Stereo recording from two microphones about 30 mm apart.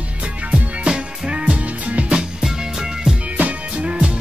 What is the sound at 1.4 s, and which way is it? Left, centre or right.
Music, right.